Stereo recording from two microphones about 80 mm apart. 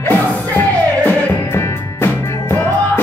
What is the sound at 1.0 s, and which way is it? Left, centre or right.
Music, left.